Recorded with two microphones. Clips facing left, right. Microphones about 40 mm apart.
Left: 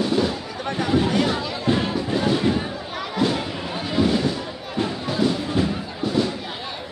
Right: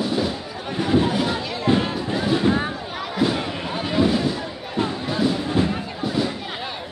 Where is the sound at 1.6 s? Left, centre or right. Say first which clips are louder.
Right 3 dB; centre.